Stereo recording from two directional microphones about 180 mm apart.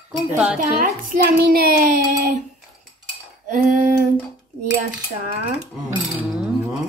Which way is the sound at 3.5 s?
50° right (ahead or behind).